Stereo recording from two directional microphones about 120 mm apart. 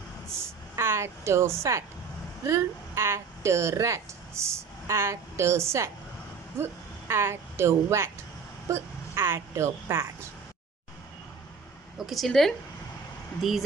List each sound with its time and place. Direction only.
0.4 s a woman's voice: 20° right (ahead or behind)
6.6 s a woman's voice: 20° right (ahead or behind)
12.1 s speech: centre (ahead or behind)